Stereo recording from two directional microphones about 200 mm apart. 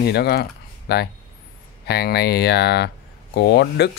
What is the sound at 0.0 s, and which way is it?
Speech, 55° left (ahead or behind).